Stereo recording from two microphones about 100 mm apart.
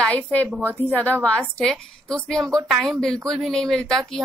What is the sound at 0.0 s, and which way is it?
A woman's voice, 15° left (ahead or behind).